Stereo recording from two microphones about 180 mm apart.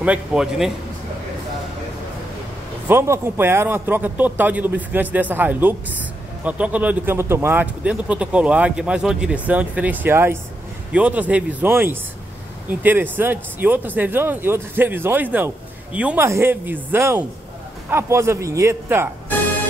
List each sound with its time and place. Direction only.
0.0 s a man's voice: 5° right (ahead or behind)
2.9 s speech: 15° right (ahead or behind)